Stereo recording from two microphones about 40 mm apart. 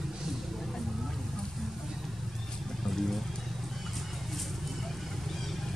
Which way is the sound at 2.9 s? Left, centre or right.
Centre.